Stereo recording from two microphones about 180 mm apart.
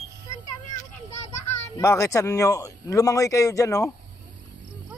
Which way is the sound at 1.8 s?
15° left (ahead or behind).